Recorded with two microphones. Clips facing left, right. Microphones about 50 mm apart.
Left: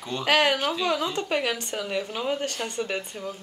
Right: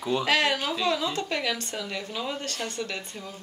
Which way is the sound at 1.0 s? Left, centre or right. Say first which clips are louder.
Left 2 dB; centre.